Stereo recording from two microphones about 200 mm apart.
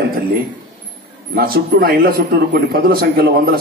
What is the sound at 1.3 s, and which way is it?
A man's voice, 50° right (ahead or behind).